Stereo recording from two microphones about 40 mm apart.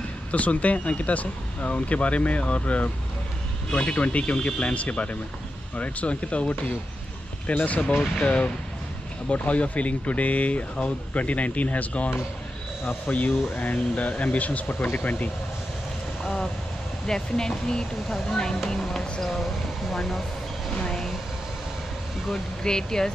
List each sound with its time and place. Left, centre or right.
0.3 s speech: left
7.6 s speech: left
17.0 s speech: centre
19.9 s a sound: centre
22.6 s speech: centre